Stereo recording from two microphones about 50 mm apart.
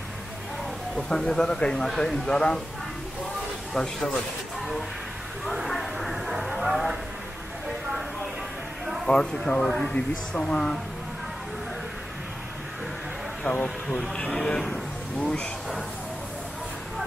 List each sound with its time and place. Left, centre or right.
0.9 s speech: centre
3.7 s speech: centre
5.4 s a sound: centre
9.0 s speech: centre
9.9 s speech: centre
13.5 s speech: centre
13.8 s speech: centre
14.1 s speech: left
14.7 s a sound: centre